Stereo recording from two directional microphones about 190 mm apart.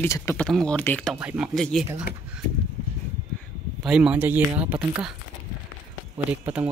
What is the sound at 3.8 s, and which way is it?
Speech, 5° right (ahead or behind).